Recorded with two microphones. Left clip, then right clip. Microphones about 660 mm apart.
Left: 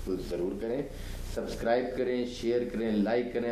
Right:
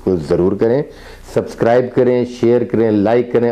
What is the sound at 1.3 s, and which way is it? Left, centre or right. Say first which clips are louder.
A man's voice: right 16 dB; right.